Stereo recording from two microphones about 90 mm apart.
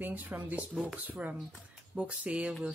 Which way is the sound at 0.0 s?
20° right (ahead or behind).